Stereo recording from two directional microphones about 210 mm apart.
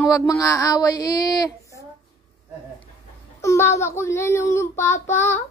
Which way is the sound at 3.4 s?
15° left (ahead or behind).